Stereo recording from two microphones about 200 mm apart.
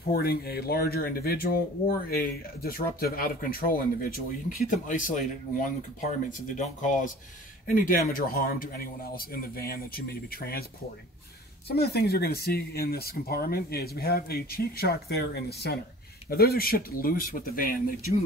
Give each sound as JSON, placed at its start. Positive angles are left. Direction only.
{"t": 0.1, "sound": "speech", "side_deg": 50}
{"t": 11.7, "sound": "speech", "side_deg": 55}